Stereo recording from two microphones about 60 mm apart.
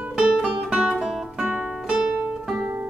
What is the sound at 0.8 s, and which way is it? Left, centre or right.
Music, centre.